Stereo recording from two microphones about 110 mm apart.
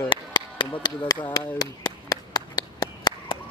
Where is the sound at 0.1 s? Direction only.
45° left (ahead or behind).